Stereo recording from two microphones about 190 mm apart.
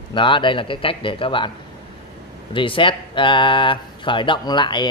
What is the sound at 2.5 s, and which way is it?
A man's voice, 25° left (ahead or behind).